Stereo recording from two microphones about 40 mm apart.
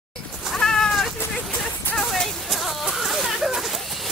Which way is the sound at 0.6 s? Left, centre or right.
Centre.